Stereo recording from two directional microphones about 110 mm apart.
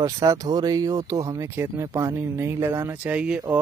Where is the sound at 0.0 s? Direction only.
30° right (ahead or behind).